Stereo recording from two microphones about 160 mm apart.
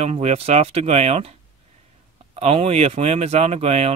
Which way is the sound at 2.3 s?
40° right (ahead or behind).